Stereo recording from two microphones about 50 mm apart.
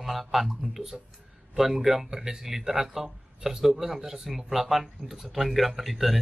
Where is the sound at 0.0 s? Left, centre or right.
Centre.